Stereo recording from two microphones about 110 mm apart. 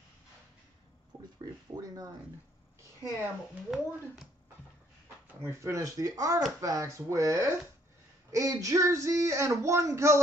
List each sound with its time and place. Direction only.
1.4 s speech: 30° right (ahead or behind)
3.7 s a child's voice: centre (ahead or behind)
5.4 s speech: 25° right (ahead or behind)